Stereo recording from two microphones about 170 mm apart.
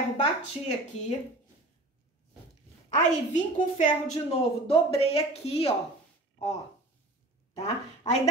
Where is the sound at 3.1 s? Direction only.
45° left (ahead or behind).